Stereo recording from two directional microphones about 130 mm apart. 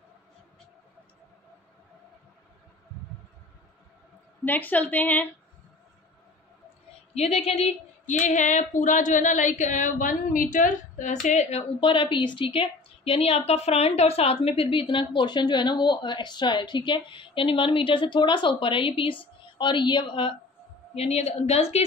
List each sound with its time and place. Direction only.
4.5 s a woman's voice: 15° left (ahead or behind)
7.2 s a woman's voice: 50° left (ahead or behind)
8.1 s a woman's voice: 70° left (ahead or behind)
11.2 s a woman's voice: 60° left (ahead or behind)
11.8 s a woman's voice: 40° left (ahead or behind)
20.9 s a woman's voice: 50° left (ahead or behind)